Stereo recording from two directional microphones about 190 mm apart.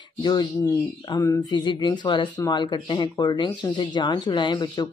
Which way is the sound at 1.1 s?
20° left (ahead or behind).